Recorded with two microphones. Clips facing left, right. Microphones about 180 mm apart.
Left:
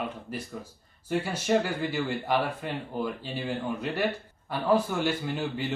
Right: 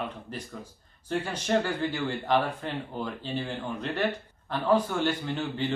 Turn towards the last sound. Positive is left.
turn(degrees=10)  # may be behind; listen again after turning